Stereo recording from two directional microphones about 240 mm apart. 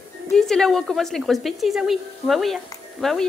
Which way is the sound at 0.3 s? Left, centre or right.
Centre.